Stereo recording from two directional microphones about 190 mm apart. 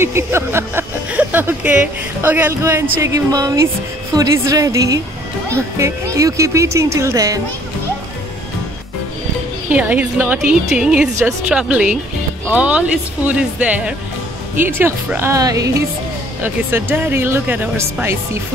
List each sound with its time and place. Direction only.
0.0 s a sound: 15° right (ahead or behind)
2.2 s speech: 10° right (ahead or behind)
9.7 s speech: 10° right (ahead or behind)